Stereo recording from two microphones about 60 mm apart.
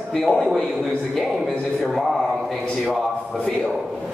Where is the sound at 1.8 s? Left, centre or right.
Centre.